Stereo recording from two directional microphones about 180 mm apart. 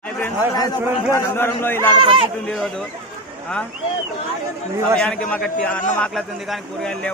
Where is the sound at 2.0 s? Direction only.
30° right (ahead or behind).